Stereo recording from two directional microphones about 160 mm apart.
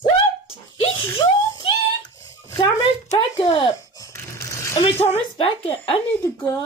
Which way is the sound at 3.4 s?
30° left (ahead or behind).